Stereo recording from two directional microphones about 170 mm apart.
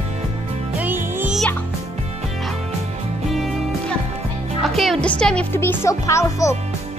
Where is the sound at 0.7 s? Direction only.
10° right (ahead or behind).